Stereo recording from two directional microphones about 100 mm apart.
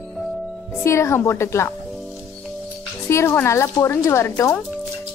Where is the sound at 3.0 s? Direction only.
25° left (ahead or behind).